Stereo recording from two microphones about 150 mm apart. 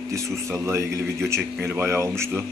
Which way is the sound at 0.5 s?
20° right (ahead or behind).